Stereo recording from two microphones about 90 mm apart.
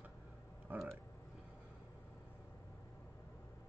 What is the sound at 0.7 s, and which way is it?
Speech, 20° right (ahead or behind).